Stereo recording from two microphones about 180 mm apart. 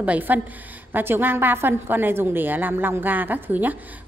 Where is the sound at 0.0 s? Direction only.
10° right (ahead or behind).